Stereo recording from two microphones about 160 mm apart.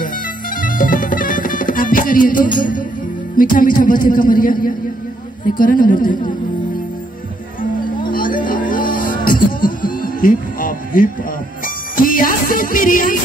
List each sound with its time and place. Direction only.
0.6 s music: 60° left (ahead or behind)
3.3 s a man's voice: 60° left (ahead or behind)
8.1 s music: 60° left (ahead or behind)